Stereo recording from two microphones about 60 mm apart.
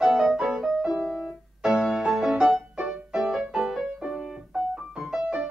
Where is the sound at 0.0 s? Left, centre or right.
Centre.